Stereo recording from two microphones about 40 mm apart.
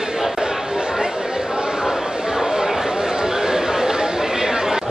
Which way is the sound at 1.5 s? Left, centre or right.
Centre.